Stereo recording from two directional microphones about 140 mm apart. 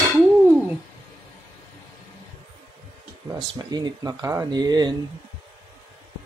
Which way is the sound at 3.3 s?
30° right (ahead or behind).